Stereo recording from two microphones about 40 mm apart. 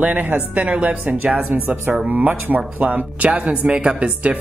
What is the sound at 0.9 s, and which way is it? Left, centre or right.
Speech, right.